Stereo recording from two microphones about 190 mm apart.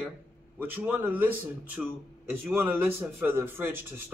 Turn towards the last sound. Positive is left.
turn(degrees=-10)  # may be behind; listen again after turning